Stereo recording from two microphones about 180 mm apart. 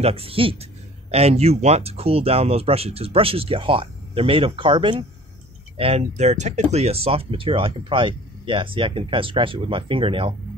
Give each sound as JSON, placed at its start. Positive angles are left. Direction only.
{"t": 0.0, "sound": "speech", "side_deg": -35}